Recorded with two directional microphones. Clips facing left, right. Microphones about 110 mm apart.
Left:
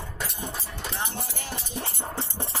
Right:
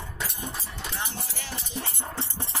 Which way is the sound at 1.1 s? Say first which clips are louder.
Left 3 dB; 50° left (ahead or behind).